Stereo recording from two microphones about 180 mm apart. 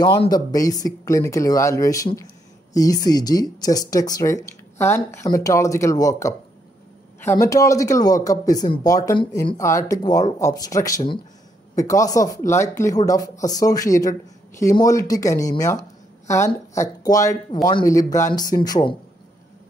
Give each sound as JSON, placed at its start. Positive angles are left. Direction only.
{"t": 0.0, "sound": "speech", "side_deg": 20}